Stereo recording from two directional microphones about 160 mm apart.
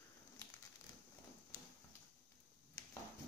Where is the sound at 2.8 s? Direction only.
20° left (ahead or behind).